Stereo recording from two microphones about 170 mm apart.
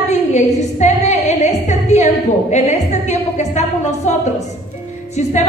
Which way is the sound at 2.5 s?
40° left (ahead or behind).